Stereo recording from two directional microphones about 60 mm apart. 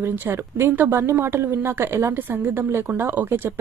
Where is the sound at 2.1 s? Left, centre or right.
Right.